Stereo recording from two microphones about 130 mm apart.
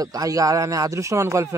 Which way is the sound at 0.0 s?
30° right (ahead or behind).